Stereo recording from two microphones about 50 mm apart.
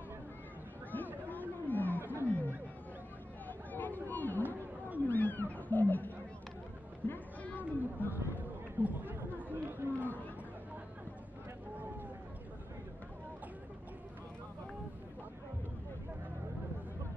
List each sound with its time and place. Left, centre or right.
1.3 s roaring cats: left
2.0 s roaring cats: right
2.2 s chatter: left
5.0 s roaring cats: left
7.0 s a sound: left
7.4 s chatter: left
8.1 s chatter: right
9.9 s chatter: left